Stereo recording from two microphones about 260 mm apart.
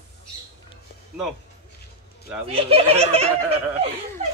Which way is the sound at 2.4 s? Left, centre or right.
Right.